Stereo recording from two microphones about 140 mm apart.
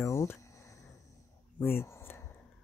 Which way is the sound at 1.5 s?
15° left (ahead or behind).